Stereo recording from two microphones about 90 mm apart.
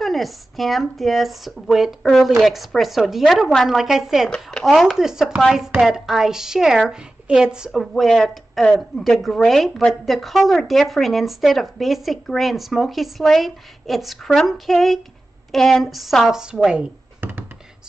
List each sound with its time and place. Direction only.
0.0 s a woman's voice: centre (ahead or behind)
4.3 s speech: 10° left (ahead or behind)
4.6 s a woman's voice: centre (ahead or behind)
7.8 s a woman's voice: 5° left (ahead or behind)
17.2 s a sound: 20° right (ahead or behind)